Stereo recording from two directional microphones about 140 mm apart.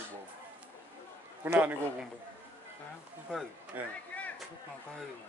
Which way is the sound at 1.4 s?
10° right (ahead or behind).